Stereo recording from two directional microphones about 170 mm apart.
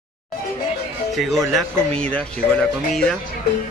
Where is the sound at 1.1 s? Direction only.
Centre (ahead or behind).